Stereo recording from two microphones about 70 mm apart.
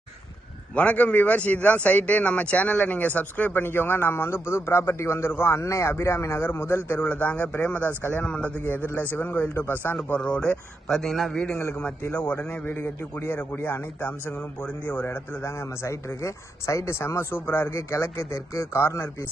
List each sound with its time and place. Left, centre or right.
0.7 s a man's voice: centre; by 7.0 s left
7.0 s speech: centre
10.9 s a man's voice: centre
12.6 s a man's voice: left
15.0 s a man's voice: left
18.8 s a man's voice: left